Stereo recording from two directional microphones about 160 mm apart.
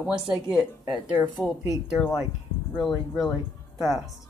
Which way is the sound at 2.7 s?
Centre (ahead or behind).